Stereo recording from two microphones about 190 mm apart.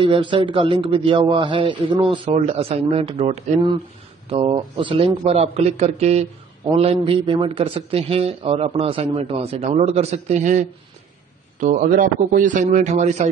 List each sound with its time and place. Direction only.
0.0 s a man's voice: 25° right (ahead or behind)